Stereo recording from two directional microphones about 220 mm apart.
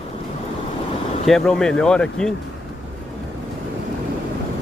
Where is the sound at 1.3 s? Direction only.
5° left (ahead or behind).